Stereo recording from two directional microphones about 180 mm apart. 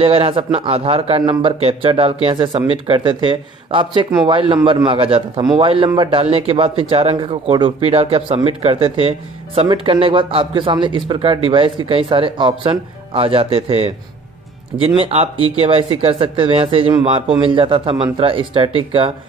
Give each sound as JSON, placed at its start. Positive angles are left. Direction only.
{"t": 0.0, "sound": "a man's voice", "side_deg": -30}
{"t": 15.0, "sound": "a man's voice", "side_deg": -30}